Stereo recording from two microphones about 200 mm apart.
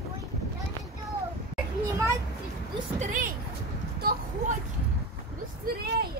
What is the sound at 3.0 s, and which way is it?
Speech, 40° right (ahead or behind).